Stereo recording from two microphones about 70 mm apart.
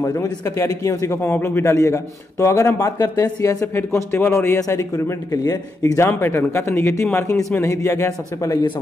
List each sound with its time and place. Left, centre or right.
0.0 s a man's voice: left
3.7 s a man's voice: left
4.6 s a man's voice: left
5.3 s a man's voice: left